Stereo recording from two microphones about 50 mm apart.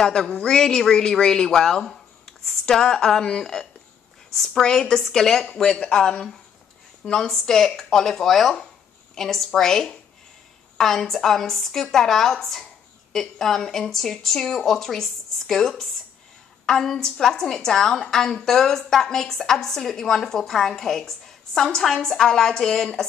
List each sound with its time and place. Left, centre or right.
0.0 s a woman's voice: centre